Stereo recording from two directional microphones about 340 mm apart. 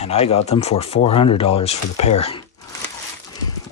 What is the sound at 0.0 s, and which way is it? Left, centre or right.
Speech, centre.